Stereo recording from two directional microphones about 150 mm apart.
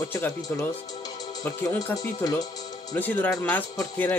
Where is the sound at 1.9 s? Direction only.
25° left (ahead or behind).